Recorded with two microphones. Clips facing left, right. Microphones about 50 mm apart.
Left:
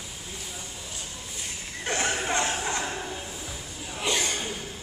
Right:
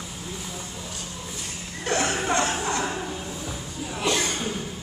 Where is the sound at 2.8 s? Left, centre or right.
Right.